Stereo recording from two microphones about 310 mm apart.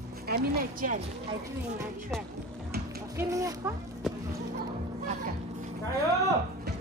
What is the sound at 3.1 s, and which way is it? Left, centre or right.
Speech, centre.